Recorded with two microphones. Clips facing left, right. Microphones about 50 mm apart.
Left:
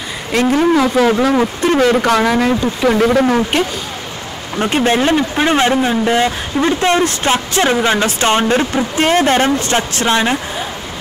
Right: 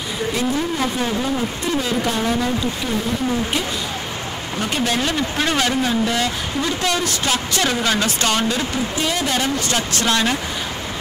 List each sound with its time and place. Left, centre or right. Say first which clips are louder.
0.3 s speech: left 9 dB; left
0.9 s speech: left 10 dB; left
1.7 s speech: left 10 dB; left
2.0 s speech: left 7 dB; left
2.8 s speech: left 10 dB; left
4.6 s speech: left 8 dB; left